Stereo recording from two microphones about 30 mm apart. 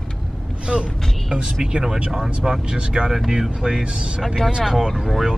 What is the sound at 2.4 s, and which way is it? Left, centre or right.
Speech, centre.